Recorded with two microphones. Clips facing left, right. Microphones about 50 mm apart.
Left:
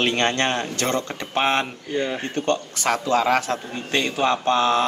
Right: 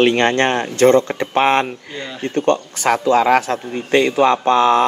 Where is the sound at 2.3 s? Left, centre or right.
Right.